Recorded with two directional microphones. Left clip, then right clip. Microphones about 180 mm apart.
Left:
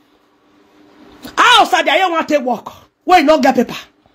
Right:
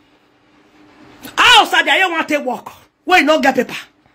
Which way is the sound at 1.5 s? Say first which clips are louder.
Even; 50° left (ahead or behind).